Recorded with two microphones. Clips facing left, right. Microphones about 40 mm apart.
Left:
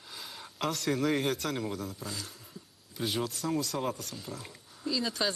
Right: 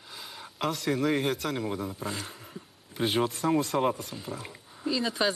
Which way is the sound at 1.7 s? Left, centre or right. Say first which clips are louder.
Right 4 dB; centre.